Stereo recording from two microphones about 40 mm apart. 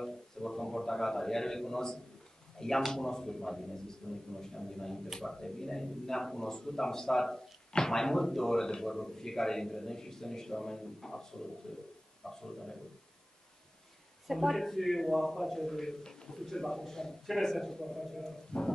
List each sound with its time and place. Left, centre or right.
0.0 s a sound: centre
2.6 s speech: centre
4.0 s a man's voice: left
4.4 s a man's voice: centre
14.2 s speech: centre
18.5 s a man's voice: left